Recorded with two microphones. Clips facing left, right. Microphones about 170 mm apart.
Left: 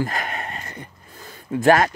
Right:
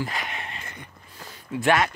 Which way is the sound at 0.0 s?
45° left (ahead or behind).